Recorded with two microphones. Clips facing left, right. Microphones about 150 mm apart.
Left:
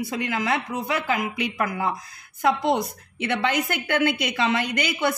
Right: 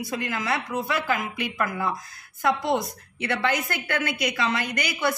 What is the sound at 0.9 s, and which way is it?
Speech, 20° left (ahead or behind).